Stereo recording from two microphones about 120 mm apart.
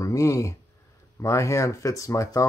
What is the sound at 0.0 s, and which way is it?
Speech, 25° left (ahead or behind).